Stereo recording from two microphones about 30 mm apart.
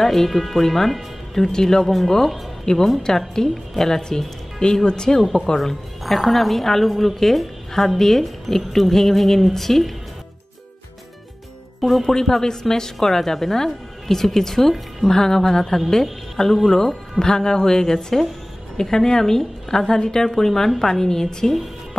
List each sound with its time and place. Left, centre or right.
0.0 s a woman's voice: centre
4.8 s a woman's voice: left
6.0 s a woman's voice: centre
11.8 s speech: centre
12.1 s a woman's voice: centre